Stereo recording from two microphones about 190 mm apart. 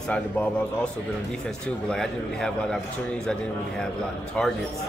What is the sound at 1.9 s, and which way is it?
Speech, 5° left (ahead or behind).